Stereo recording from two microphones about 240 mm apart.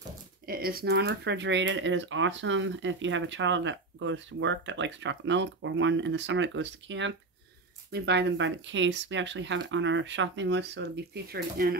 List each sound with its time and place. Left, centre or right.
0.5 s speech: right